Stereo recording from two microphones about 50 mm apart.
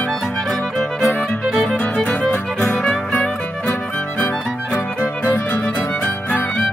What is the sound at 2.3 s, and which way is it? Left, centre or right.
Music, left.